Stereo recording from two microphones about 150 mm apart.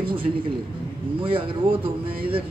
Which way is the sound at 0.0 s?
35° right (ahead or behind).